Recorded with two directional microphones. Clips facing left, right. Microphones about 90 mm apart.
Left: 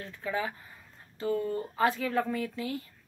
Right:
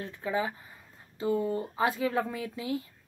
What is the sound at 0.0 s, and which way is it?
Speech, 20° right (ahead or behind).